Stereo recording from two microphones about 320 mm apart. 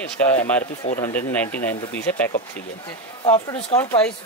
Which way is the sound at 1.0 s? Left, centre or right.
Centre.